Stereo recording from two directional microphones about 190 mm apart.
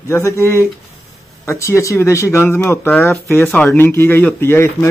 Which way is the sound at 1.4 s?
15° left (ahead or behind).